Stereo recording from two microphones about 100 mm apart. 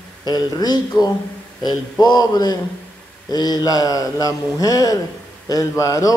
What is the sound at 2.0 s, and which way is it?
A man's voice, 45° left (ahead or behind).